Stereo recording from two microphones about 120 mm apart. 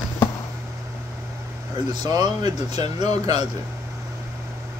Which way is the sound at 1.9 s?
35° right (ahead or behind).